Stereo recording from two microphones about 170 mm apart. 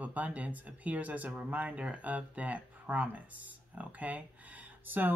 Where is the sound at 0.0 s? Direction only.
10° right (ahead or behind).